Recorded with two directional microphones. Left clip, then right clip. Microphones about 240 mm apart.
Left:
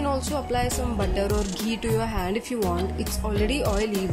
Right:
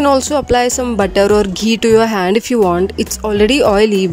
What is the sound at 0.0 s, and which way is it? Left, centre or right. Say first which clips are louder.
Speech: right 14 dB; right.